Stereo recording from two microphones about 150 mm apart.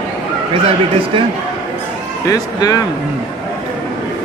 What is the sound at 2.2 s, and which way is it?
Speech, 25° left (ahead or behind).